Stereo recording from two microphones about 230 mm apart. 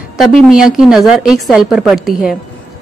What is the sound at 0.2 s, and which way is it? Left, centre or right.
Speech, centre.